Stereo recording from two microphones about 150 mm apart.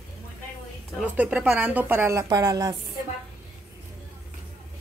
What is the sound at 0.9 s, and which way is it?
Speech, 5° right (ahead or behind).